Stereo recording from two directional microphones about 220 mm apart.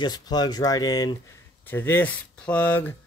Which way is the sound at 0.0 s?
20° left (ahead or behind).